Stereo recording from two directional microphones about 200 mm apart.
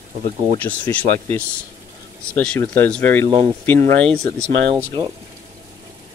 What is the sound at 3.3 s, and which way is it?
Speech, 30° right (ahead or behind).